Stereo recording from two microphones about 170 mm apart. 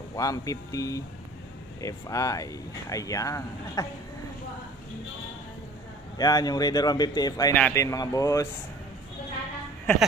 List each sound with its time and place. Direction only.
0.1 s speech: 20° left (ahead or behind)
6.1 s speech: 20° left (ahead or behind)
7.5 s a man's voice: 10° left (ahead or behind)
7.8 s speech: 20° left (ahead or behind)